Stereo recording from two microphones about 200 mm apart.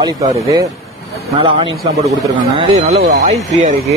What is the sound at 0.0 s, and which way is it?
A man's voice, 15° right (ahead or behind).